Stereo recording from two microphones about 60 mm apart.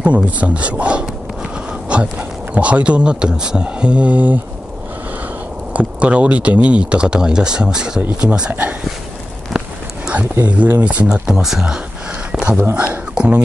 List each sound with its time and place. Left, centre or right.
0.0 s speech: right
5.7 s speech: right
10.4 s speech: right
11.1 s speech: centre
12.3 s a sound: centre
12.7 s speech: right